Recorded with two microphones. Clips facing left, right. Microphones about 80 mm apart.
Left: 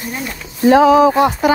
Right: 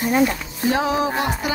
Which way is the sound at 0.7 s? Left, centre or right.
Left.